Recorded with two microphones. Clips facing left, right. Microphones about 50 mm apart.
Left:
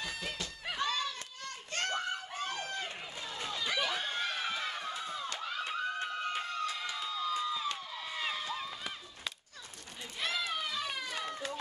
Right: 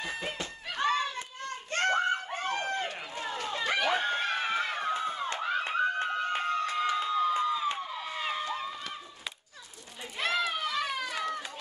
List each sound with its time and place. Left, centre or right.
0.0 s snicker: right
0.7 s children playing: right
3.4 s a sound: right; by 8.5 s centre
10.1 s run: right